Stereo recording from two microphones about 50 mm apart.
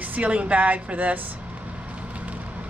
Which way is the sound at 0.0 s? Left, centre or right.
Right.